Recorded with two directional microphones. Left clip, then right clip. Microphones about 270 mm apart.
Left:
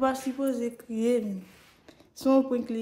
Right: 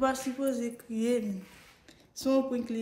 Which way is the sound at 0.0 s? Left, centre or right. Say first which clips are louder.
Left 2 dB; centre.